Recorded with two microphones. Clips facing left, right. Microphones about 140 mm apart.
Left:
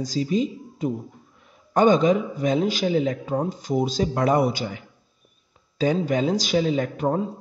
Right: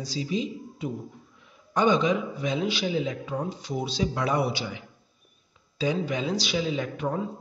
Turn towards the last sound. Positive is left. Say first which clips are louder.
# left 6 dB
turn(degrees=45)  # may be behind; listen again after turning